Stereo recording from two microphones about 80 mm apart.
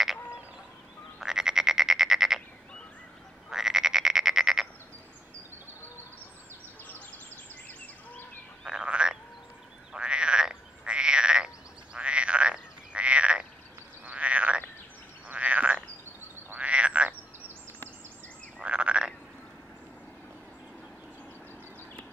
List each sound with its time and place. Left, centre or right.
1.2 s frog: centre
3.4 s frog: centre
8.6 s frog: centre
18.6 s frog: centre